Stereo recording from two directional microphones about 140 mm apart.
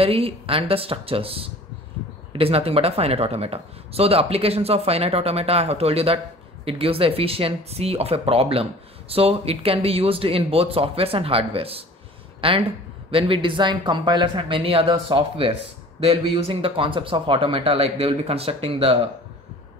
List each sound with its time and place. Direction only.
0.0 s speech: 40° right (ahead or behind)